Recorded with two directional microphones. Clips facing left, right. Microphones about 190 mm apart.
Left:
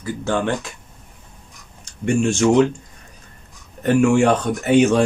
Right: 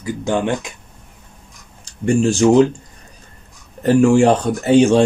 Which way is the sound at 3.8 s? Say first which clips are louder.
Right 3 dB; 35° right (ahead or behind).